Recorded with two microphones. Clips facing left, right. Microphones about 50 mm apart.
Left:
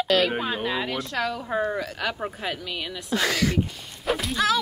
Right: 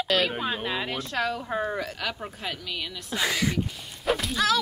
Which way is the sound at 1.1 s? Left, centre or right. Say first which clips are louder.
Right 2 dB; right.